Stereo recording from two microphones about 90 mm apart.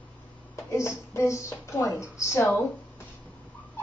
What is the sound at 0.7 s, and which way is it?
A woman's voice, 30° left (ahead or behind).